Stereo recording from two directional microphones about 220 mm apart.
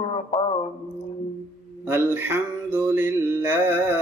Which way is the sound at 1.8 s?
10° right (ahead or behind).